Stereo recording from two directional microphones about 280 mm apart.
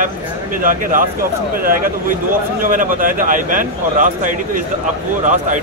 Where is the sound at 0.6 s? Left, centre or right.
Right.